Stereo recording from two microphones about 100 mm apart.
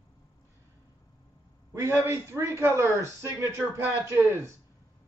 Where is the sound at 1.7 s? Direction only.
25° right (ahead or behind).